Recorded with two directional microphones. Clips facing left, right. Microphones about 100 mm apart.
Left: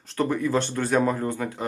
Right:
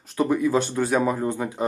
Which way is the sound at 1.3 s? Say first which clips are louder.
Right 3 dB; 20° right (ahead or behind).